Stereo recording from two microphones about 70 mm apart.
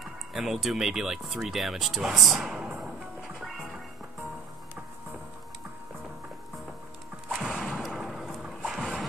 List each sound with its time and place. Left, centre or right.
0.3 s speech: centre
2.6 s music: centre
7.3 s a sound: centre
7.7 s vehicle: centre